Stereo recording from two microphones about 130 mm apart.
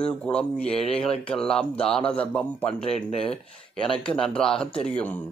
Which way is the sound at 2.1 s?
10° left (ahead or behind).